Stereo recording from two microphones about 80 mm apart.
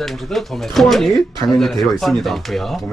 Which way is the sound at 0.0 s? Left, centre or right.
Centre.